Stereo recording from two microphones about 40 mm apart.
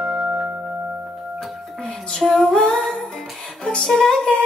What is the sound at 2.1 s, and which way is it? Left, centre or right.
Music, centre.